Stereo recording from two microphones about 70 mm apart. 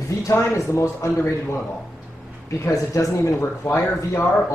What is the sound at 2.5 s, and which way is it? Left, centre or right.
A man's voice, left.